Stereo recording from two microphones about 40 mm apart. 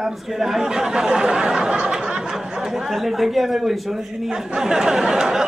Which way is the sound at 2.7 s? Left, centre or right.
Centre.